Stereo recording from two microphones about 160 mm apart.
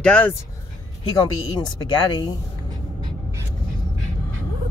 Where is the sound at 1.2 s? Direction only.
25° left (ahead or behind).